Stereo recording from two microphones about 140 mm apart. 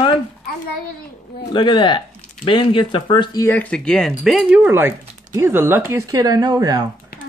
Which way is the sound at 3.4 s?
15° left (ahead or behind).